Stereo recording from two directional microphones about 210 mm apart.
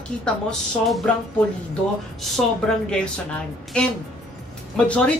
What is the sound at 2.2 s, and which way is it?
Speech, centre (ahead or behind).